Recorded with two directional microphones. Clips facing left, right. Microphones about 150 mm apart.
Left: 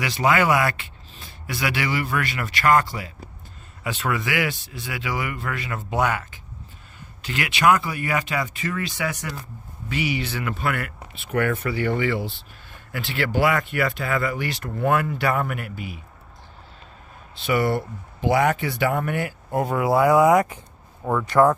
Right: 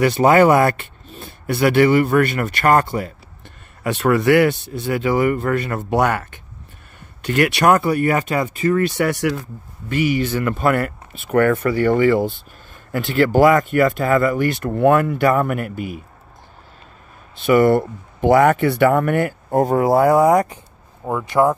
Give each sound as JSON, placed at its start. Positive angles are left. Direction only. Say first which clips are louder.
{"t": 0.0, "sound": "speech", "louder": "right 8 dB", "side_deg": -50}
{"t": 9.8, "sound": "speech", "louder": "right 7 dB", "side_deg": -50}
{"t": 17.4, "sound": "speech", "louder": "right 8 dB", "side_deg": -50}
{"t": 21.0, "sound": "speech", "louder": "right 1 dB", "side_deg": -15}